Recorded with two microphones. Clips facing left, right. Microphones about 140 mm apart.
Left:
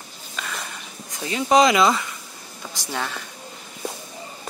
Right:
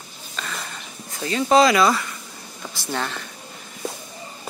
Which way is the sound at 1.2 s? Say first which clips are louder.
Right 1 dB; 15° left (ahead or behind).